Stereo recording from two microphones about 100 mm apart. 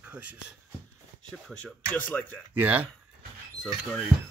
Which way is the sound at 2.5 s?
15° right (ahead or behind).